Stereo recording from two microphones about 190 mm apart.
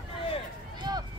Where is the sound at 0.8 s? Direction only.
20° right (ahead or behind).